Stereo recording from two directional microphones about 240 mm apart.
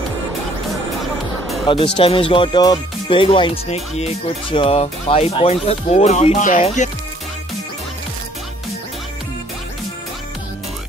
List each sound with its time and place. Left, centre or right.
2.0 s speech: left